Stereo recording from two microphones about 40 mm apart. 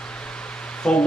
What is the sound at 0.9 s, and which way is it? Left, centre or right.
Speech, centre.